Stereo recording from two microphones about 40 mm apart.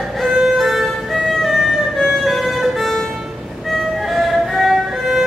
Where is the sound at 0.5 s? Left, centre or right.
Centre.